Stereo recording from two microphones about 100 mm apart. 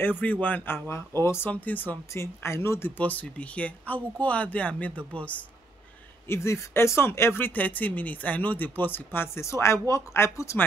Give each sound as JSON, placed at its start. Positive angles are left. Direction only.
{"t": 0.2, "sound": "speech", "side_deg": 15}
{"t": 3.0, "sound": "speech", "side_deg": 15}
{"t": 6.2, "sound": "speech", "side_deg": 25}